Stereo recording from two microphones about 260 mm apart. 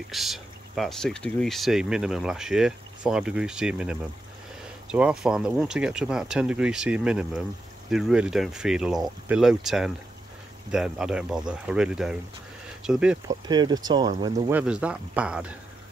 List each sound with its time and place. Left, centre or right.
0.1 s speech: centre
13.5 s speech: centre
14.5 s speech: centre